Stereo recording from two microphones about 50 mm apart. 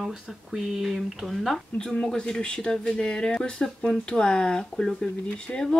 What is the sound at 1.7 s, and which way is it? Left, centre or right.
A woman's voice, centre.